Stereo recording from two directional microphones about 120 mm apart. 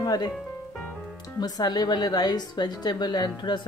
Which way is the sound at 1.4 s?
35° left (ahead or behind).